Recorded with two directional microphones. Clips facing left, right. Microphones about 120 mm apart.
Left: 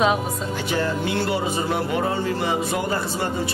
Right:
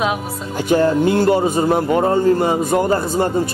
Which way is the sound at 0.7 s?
45° right (ahead or behind).